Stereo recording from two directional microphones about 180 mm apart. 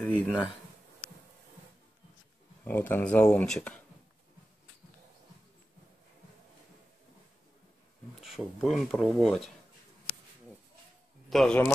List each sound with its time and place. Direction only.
0.0 s a sound: 10° left (ahead or behind)
2.6 s speech: 10° left (ahead or behind)
8.2 s speech: centre (ahead or behind)
11.2 s a man's voice: 5° left (ahead or behind)